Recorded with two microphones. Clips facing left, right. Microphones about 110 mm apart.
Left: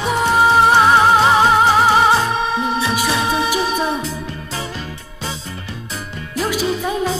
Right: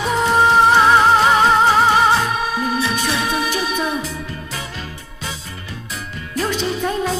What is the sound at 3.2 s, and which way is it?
Music, 30° left (ahead or behind).